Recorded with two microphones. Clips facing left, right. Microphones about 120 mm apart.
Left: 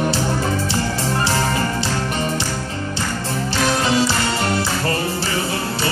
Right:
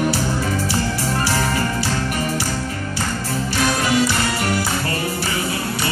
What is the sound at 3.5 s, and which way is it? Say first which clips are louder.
Music: left 1 dB; 30° left (ahead or behind).